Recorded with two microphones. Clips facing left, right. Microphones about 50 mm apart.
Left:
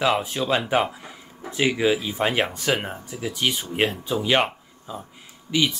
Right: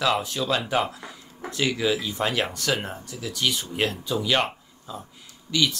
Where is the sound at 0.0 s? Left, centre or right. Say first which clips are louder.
Left 2 dB; left.